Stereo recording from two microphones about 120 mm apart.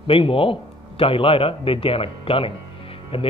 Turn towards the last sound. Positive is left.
turn(degrees=50)  # may be behind; listen again after turning